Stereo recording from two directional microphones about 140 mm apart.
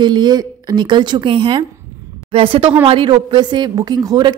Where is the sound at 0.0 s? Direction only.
30° right (ahead or behind).